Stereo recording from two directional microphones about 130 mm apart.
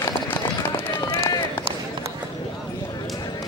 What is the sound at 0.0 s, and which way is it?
Run, 25° left (ahead or behind).